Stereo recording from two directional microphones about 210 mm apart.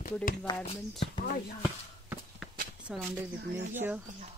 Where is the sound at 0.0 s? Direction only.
45° left (ahead or behind).